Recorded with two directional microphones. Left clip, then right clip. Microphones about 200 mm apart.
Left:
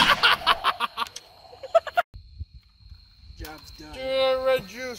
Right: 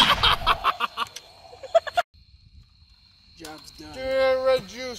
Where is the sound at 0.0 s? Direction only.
10° left (ahead or behind).